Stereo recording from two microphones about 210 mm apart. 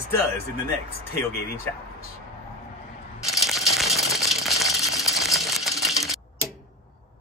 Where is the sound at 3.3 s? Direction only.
Centre (ahead or behind).